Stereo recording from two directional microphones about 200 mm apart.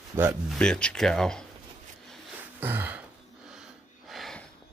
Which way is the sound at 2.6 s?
10° right (ahead or behind).